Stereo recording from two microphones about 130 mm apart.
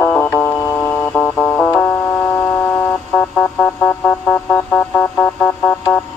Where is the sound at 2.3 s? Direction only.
20° left (ahead or behind).